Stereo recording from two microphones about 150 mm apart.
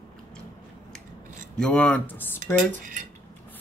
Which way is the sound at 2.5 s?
60° right (ahead or behind).